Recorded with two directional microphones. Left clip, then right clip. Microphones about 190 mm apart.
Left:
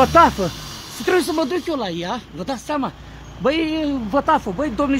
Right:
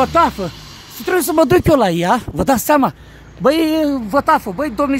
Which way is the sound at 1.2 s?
45° right (ahead or behind).